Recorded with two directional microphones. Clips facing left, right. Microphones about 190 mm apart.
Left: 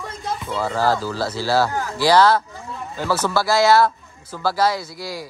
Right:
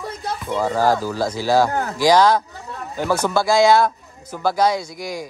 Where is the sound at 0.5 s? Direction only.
15° right (ahead or behind).